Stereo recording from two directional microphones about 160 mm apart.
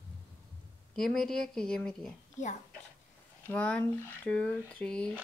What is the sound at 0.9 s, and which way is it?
Speech, 5° left (ahead or behind).